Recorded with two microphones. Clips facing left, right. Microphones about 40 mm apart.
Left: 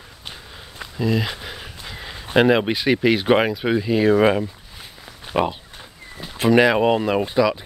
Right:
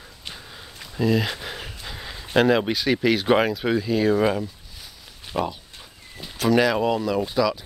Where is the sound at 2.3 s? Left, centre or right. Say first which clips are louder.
Left 3 dB; centre.